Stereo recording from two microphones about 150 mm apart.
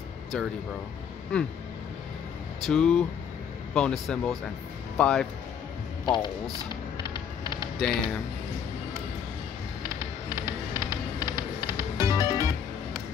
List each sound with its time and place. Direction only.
0.3 s speech: 5° left (ahead or behind)
2.6 s speech: 5° left (ahead or behind)
6.0 s speech: 30° left (ahead or behind)
9.8 s music: 20° right (ahead or behind)